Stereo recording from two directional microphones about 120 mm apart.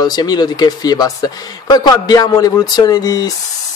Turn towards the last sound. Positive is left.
turn(degrees=35)  # may be behind; listen again after turning